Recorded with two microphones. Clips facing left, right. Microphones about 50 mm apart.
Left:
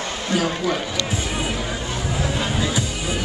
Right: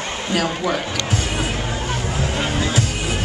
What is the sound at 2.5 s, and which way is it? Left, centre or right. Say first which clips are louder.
Music: right 2 dB; right.